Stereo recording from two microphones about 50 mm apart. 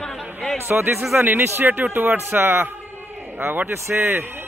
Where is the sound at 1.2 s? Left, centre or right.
Right.